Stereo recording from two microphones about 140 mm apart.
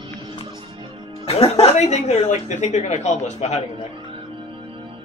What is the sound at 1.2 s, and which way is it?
Speech, 50° left (ahead or behind).